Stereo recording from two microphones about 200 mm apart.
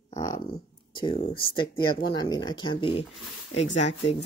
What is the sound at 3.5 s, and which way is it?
Speech, 70° left (ahead or behind).